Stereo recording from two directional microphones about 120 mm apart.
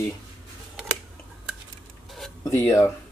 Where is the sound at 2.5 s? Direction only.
20° left (ahead or behind).